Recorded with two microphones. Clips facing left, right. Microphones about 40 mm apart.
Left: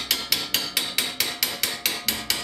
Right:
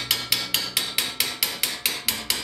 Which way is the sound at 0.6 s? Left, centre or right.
Centre.